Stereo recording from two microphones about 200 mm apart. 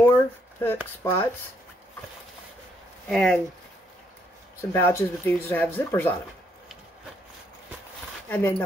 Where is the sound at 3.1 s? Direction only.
5° left (ahead or behind).